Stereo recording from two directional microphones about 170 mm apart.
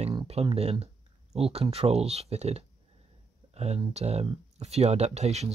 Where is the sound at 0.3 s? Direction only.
35° right (ahead or behind).